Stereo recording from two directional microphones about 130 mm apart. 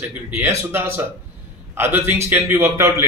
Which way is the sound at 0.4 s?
20° right (ahead or behind).